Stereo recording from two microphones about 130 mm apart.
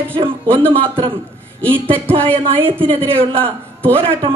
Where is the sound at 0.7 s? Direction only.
40° right (ahead or behind).